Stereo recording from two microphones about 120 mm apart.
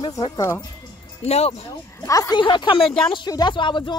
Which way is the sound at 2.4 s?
40° left (ahead or behind).